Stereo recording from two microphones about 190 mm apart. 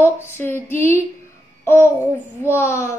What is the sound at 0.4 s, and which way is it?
Speech, 10° left (ahead or behind).